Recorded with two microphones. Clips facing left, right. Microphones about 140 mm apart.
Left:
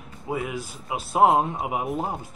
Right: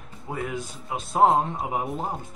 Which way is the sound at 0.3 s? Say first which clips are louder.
Left 2 dB; 5° left (ahead or behind).